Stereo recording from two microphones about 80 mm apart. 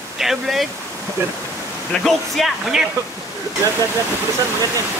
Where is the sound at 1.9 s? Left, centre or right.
Centre.